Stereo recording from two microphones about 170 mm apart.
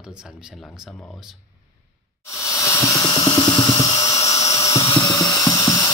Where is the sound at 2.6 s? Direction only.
15° left (ahead or behind).